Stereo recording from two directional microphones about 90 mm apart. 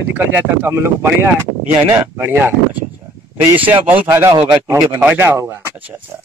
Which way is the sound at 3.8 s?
25° right (ahead or behind).